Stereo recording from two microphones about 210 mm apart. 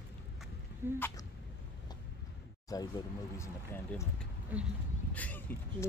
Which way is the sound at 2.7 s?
15° left (ahead or behind).